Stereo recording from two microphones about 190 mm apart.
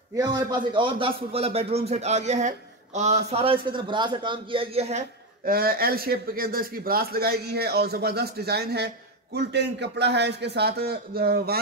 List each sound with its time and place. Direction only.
0.1 s a man's voice: 20° right (ahead or behind)
5.4 s speech: 50° right (ahead or behind)